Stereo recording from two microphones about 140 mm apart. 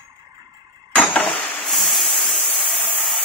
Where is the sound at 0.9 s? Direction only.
5° left (ahead or behind).